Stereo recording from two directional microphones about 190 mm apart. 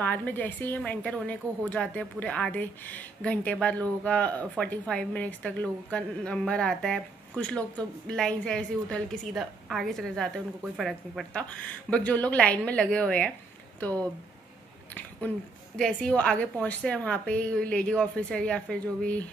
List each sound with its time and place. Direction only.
0.0 s a woman's voice: 10° left (ahead or behind)